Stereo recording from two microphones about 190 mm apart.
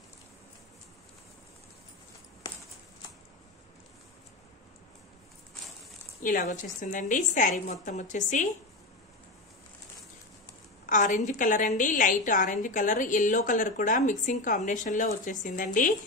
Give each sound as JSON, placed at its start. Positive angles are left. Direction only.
{"t": 6.2, "sound": "a woman's voice", "side_deg": 45}
{"t": 10.9, "sound": "a woman's voice", "side_deg": 40}